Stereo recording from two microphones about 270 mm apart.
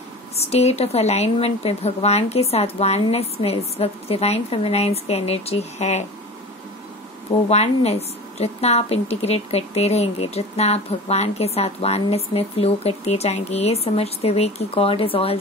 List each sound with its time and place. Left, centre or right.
0.4 s a woman's voice: left
7.4 s a woman's voice: left